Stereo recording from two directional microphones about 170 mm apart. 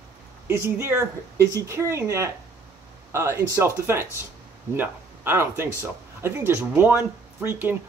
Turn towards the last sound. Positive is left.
turn(degrees=-10)  # may be behind; listen again after turning